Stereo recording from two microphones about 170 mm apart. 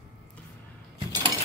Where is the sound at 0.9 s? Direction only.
25° right (ahead or behind).